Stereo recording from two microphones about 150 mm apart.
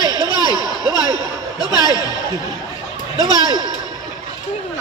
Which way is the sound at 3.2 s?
25° left (ahead or behind).